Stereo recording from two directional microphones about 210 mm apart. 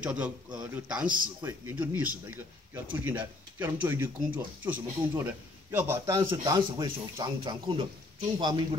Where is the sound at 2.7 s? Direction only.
10° right (ahead or behind).